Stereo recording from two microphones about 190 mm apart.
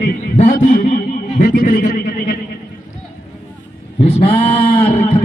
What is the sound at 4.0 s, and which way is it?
Speech, 30° left (ahead or behind).